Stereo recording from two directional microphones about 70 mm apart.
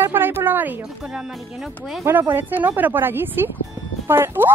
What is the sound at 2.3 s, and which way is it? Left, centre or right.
A woman's voice, right.